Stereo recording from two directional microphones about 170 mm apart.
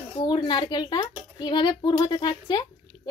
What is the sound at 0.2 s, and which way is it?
A woman's voice, 30° left (ahead or behind).